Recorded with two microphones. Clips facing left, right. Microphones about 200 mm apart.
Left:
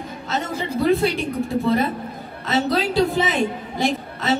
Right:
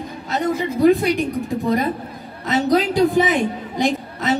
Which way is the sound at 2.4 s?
15° right (ahead or behind).